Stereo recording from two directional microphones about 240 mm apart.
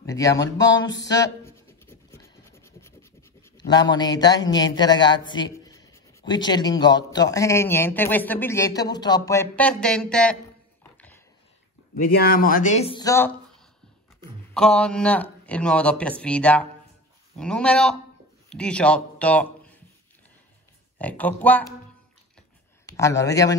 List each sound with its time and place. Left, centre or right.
0.0 s speech: centre
10.8 s a sound: centre
11.9 s a man's voice: left; by 13.3 s centre
14.5 s a man's voice: centre
21.0 s speech: centre
22.8 s a man's voice: centre